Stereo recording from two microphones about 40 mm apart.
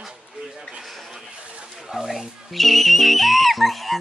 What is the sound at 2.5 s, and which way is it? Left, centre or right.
Music, centre.